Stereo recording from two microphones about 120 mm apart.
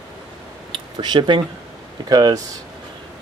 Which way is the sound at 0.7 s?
45° right (ahead or behind).